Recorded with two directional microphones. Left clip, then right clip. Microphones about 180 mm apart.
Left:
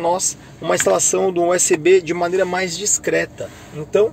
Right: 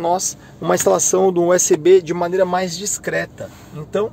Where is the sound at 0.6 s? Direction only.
20° right (ahead or behind).